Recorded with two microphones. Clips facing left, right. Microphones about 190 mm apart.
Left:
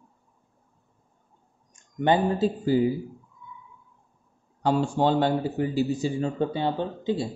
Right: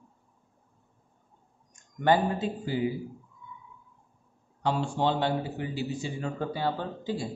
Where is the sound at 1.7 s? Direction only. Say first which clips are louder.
Left 2 dB; 20° left (ahead or behind).